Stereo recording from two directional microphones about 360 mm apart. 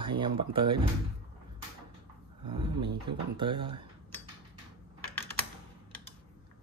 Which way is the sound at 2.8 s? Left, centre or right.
Right.